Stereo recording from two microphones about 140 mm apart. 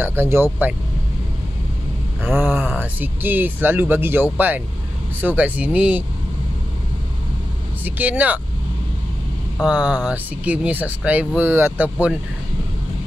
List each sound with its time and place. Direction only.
0.0 s speech: 15° right (ahead or behind)
2.2 s speech: 10° right (ahead or behind)
7.8 s speech: 10° right (ahead or behind)
9.6 s speech: 5° right (ahead or behind)